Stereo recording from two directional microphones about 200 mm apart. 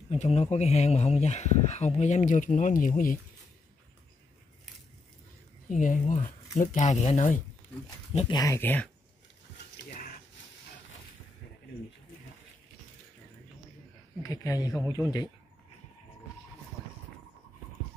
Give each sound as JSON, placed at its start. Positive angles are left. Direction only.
{"t": 0.1, "sound": "speech", "side_deg": 35}
{"t": 5.7, "sound": "speech", "side_deg": 40}
{"t": 8.4, "sound": "speech", "side_deg": 15}
{"t": 14.2, "sound": "speech", "side_deg": 15}